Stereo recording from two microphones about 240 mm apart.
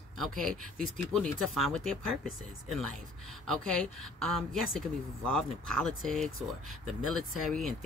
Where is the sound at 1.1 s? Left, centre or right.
Centre.